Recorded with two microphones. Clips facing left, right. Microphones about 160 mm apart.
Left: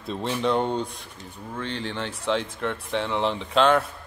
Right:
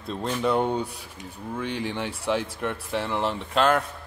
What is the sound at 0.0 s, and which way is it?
Speech, centre (ahead or behind).